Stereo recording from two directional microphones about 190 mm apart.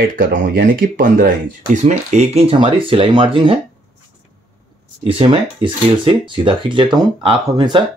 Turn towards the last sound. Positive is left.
turn(degrees=-25)  # may be behind; listen again after turning